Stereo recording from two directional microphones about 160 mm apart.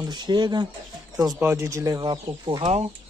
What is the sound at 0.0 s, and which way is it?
Speech, 25° right (ahead or behind).